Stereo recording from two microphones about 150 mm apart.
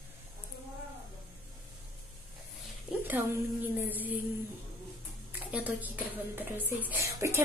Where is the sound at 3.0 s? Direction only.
10° right (ahead or behind).